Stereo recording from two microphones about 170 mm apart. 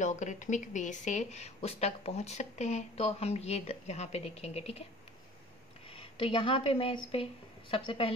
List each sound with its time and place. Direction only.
0.0 s speech: 45° left (ahead or behind)
5.9 s speech: 30° left (ahead or behind)